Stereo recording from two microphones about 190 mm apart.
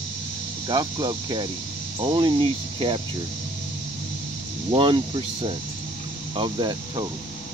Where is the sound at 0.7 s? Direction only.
20° right (ahead or behind).